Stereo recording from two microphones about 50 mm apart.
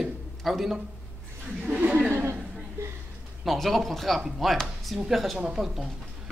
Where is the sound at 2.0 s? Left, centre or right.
Right.